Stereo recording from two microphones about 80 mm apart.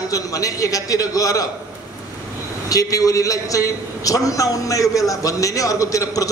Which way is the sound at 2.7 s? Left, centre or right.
Left.